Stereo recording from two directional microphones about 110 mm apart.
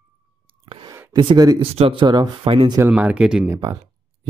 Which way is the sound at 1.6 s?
60° right (ahead or behind).